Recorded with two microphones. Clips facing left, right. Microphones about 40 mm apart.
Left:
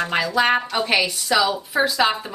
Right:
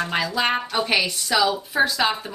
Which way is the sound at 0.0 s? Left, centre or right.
Centre.